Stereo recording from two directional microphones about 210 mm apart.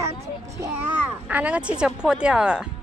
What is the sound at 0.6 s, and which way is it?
Speech, 10° right (ahead or behind).